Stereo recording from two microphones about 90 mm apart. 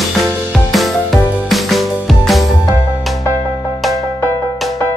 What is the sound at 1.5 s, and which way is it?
Music, centre (ahead or behind).